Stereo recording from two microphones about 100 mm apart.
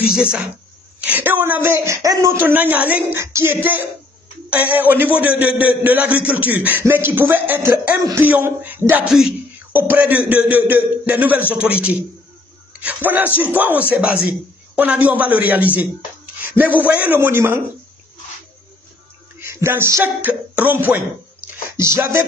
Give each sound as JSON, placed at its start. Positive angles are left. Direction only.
{"t": 0.0, "sound": "a man's voice", "side_deg": -10}
{"t": 19.4, "sound": "speech", "side_deg": -25}
{"t": 21.6, "sound": "a sound", "side_deg": -25}